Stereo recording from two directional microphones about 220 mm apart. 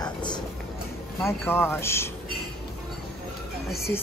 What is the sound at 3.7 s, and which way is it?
Speech, 10° left (ahead or behind).